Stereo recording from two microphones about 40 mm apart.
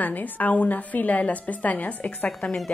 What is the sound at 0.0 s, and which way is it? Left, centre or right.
A woman's voice, left.